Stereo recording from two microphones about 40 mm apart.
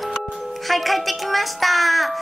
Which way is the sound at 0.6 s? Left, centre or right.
Centre.